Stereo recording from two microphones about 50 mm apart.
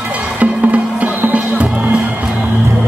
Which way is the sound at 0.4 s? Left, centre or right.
Right.